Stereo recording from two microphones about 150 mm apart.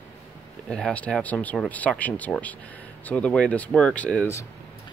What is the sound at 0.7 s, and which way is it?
Speech, 5° left (ahead or behind).